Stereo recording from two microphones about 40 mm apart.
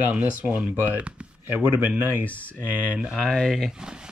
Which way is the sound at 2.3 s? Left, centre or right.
Left.